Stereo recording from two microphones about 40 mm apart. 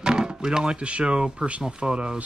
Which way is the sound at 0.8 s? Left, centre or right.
Right.